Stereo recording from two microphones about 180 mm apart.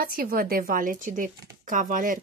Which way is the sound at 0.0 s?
55° right (ahead or behind).